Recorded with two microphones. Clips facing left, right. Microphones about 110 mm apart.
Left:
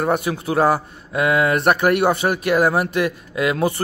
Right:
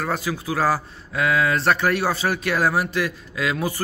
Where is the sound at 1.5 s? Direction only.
15° left (ahead or behind).